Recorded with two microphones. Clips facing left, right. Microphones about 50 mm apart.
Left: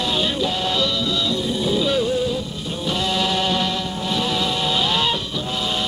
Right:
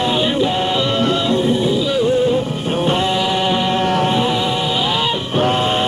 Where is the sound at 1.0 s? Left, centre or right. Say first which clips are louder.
Right 7 dB; right.